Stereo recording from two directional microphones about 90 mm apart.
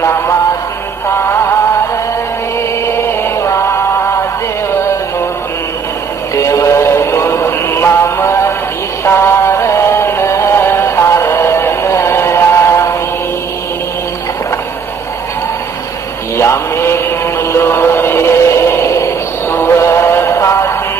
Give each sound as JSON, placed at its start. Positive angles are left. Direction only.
{"t": 0.0, "sound": "music", "side_deg": 30}
{"t": 3.0, "sound": "music", "side_deg": 30}
{"t": 6.3, "sound": "music", "side_deg": 35}
{"t": 16.3, "sound": "music", "side_deg": 30}